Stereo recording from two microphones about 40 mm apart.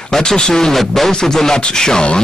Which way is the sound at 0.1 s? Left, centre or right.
Centre.